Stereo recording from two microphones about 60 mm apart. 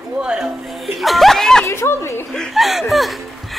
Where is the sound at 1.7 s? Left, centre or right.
Left.